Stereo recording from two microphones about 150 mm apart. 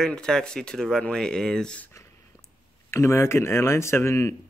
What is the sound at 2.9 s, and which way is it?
Speech, 15° left (ahead or behind).